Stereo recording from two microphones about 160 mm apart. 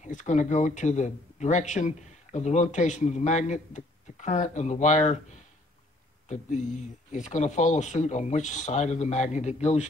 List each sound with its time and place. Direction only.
0.0 s speech: 50° left (ahead or behind)
7.1 s speech: 50° left (ahead or behind)